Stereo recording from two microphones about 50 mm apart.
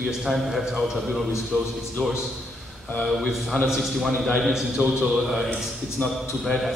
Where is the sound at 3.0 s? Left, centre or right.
Centre.